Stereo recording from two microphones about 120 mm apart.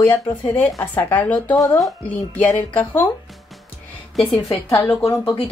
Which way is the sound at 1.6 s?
30° left (ahead or behind).